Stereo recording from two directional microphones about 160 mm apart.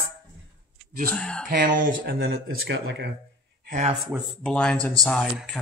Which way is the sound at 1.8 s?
75° right (ahead or behind).